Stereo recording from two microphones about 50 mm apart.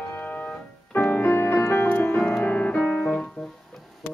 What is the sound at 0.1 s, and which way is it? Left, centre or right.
Music, left.